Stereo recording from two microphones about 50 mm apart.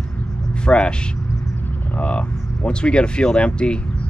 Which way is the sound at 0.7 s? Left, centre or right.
Left.